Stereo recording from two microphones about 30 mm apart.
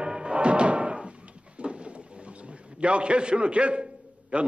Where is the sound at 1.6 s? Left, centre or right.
Right.